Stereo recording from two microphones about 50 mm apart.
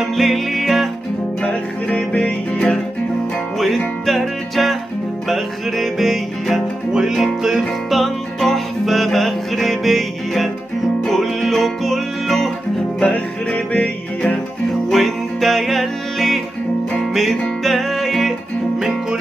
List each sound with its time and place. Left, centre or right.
0.0 s music: centre
1.4 s music: left
3.5 s music: centre
13.0 s music: left
14.9 s music: centre